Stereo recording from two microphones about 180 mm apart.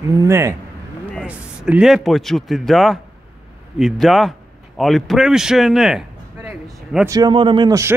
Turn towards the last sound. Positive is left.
turn(degrees=-20)  # may be behind; listen again after turning